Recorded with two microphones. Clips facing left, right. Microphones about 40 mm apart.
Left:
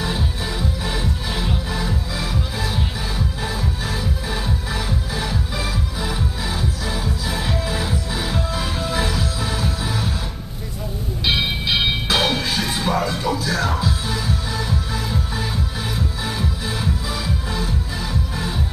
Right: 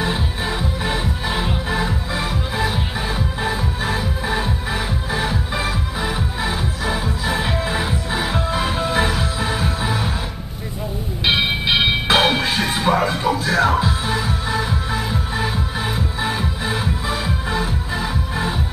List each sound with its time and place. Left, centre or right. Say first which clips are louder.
0.0 s music: right 3 dB; centre
11.2 s a sound: right 3 dB; right
16.2 s music: right 3 dB; right